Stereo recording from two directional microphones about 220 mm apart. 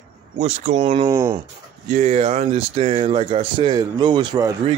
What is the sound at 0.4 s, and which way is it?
Speech, 30° right (ahead or behind).